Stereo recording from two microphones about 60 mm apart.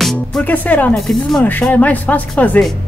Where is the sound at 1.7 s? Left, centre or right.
Left.